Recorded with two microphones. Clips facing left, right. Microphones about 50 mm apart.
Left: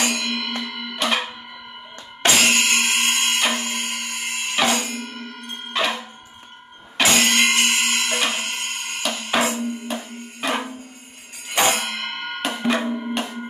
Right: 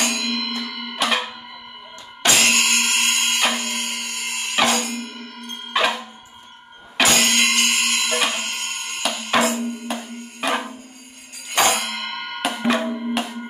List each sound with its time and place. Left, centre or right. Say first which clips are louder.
0.0 s music: even; centre
0.6 s music: even; centre
0.8 s music: right 1 dB; centre
3.2 s music: even; centre
7.1 s music: left 2 dB; centre
12.4 s music: right 1 dB; centre